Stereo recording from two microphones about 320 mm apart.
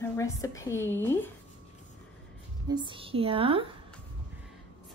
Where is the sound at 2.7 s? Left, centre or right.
Centre.